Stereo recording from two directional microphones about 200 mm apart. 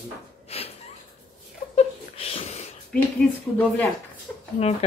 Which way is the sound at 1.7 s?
30° left (ahead or behind).